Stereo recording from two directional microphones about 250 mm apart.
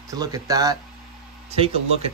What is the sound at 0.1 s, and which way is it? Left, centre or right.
Speech, centre.